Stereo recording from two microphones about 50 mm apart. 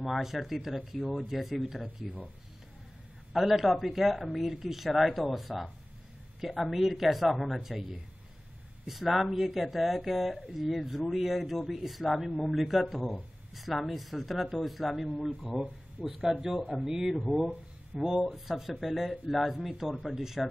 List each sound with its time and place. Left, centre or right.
0.0 s speech: centre
3.3 s speech: centre
8.8 s speech: centre